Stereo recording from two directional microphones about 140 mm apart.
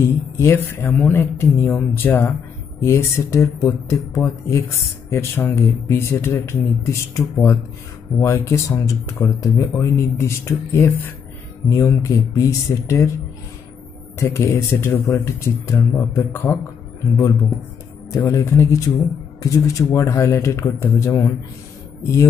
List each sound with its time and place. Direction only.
0.0 s speech: 20° left (ahead or behind)
14.2 s speech: 20° left (ahead or behind)
18.1 s speech: 20° left (ahead or behind)